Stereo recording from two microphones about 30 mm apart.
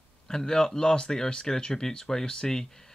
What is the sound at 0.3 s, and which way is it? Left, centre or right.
Speech, centre.